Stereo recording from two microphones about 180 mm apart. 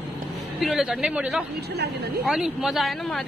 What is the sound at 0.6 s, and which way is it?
Speech, centre (ahead or behind).